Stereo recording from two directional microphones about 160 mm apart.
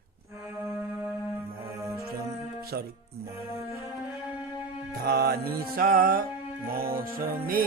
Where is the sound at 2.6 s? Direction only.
70° right (ahead or behind).